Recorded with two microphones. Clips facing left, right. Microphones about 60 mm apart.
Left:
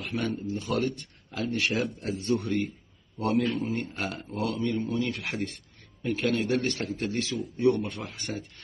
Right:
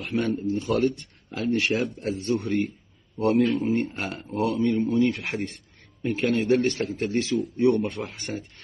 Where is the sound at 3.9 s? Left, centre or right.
Right.